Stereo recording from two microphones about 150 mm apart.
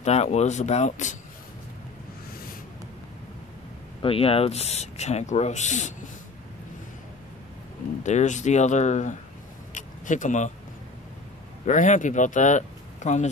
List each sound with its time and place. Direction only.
0.0 s speech: 45° left (ahead or behind)
4.0 s speech: 40° left (ahead or behind)
8.0 s speech: 50° left (ahead or behind)
9.8 s vehicle: 55° left (ahead or behind)
11.6 s speech: 55° left (ahead or behind)